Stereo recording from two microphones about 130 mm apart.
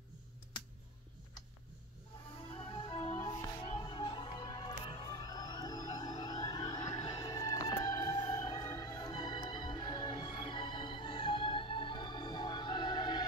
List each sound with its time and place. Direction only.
2.5 s music: 40° left (ahead or behind)
3.2 s music: 30° left (ahead or behind)
3.9 s music: 40° left (ahead or behind)